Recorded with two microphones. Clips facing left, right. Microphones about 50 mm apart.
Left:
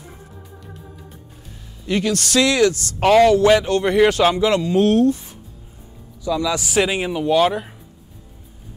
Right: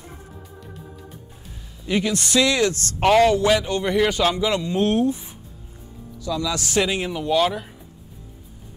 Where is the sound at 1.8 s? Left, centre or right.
Centre.